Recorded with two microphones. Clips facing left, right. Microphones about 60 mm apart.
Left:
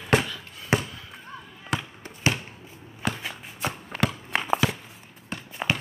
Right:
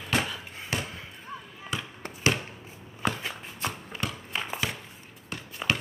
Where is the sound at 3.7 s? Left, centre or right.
Left.